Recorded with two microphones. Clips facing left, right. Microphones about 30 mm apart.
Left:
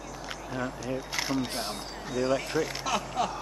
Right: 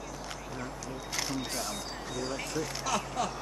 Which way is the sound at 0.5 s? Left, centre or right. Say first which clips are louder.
Left 10 dB; left.